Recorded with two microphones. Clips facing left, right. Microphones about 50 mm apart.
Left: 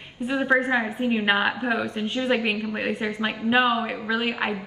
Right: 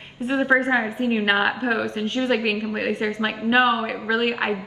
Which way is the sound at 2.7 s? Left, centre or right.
Centre.